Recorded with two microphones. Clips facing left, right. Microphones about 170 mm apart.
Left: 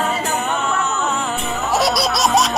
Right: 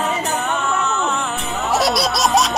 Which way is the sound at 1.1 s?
Centre (ahead or behind).